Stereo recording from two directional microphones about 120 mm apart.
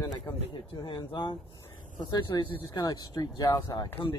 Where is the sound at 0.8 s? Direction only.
45° left (ahead or behind).